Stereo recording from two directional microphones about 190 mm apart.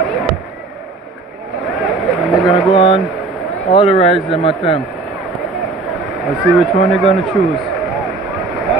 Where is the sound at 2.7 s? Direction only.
30° left (ahead or behind).